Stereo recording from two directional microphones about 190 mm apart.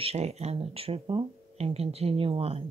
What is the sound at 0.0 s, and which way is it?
Speech, 35° right (ahead or behind).